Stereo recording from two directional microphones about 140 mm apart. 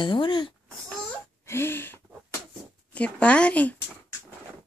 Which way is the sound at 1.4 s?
15° left (ahead or behind).